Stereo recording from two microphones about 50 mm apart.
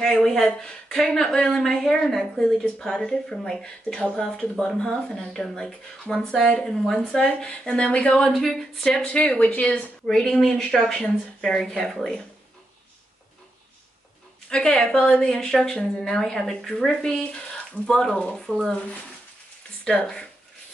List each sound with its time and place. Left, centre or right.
0.0 s speech: centre
7.2 s speech: left
8.2 s speech: centre; by 9.8 s left
10.0 s speech: centre
14.5 s speech: centre
18.5 s speech: right
19.8 s speech: centre